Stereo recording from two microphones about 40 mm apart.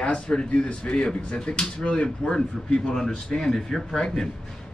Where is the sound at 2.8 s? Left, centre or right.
Centre.